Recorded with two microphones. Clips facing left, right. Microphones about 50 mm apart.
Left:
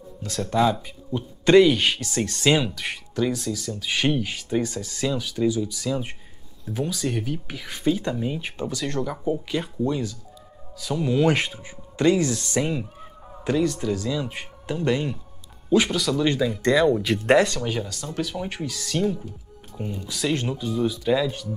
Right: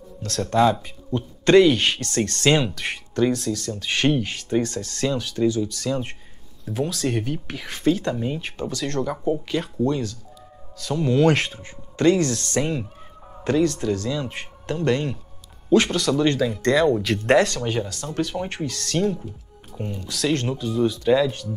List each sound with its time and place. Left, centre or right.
0.2 s speech: centre
2.7 s speech: centre
8.4 s speech: centre
9.0 s speech: centre
17.6 s speech: centre
18.7 s speech: centre
18.9 s speech: centre